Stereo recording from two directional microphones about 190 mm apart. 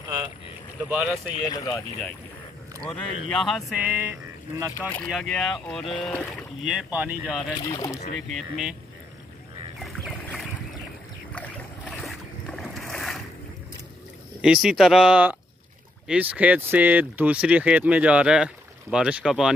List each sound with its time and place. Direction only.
0.8 s speech: 5° right (ahead or behind)
1.3 s speech: 20° left (ahead or behind)
2.8 s speech: 5° left (ahead or behind)
3.7 s speech: 10° right (ahead or behind)
4.7 s speech: 10° left (ahead or behind)
7.6 s speech: 20° left (ahead or behind)
8.3 s speech: centre (ahead or behind)
9.8 s boat: centre (ahead or behind)
14.4 s speech: 5° right (ahead or behind)